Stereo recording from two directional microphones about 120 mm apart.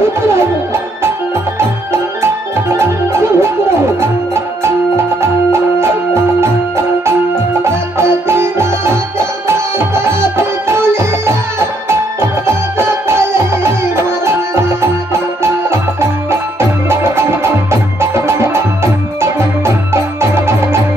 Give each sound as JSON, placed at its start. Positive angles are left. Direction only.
{"t": 1.6, "sound": "music", "side_deg": -20}
{"t": 4.6, "sound": "music", "side_deg": -20}
{"t": 7.6, "sound": "music", "side_deg": -20}